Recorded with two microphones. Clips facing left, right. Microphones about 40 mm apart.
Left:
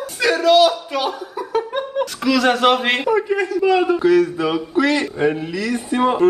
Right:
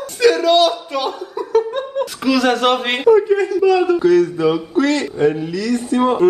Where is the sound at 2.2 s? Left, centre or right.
Centre.